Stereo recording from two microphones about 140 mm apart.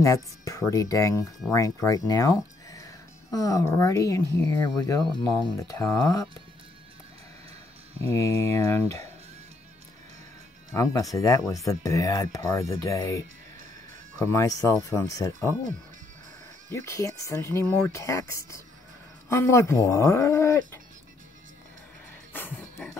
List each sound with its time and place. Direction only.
0.0 s speech: 25° left (ahead or behind)
8.0 s speech: 20° left (ahead or behind)
10.7 s speech: 20° left (ahead or behind)
14.2 s speech: 20° left (ahead or behind)
16.7 s speech: 20° left (ahead or behind)
22.3 s a sound: 15° left (ahead or behind)